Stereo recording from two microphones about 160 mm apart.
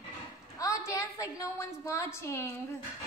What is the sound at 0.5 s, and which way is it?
A woman's voice, 20° left (ahead or behind).